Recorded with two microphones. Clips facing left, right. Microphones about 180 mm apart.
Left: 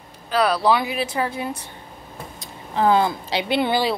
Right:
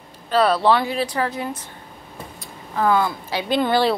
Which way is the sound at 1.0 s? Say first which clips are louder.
Right 1 dB; 25° left (ahead or behind).